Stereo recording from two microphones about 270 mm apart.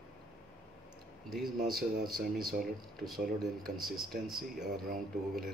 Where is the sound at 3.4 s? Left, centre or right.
Centre.